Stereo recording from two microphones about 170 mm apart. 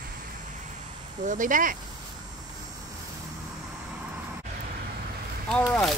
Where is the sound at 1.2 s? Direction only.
50° right (ahead or behind).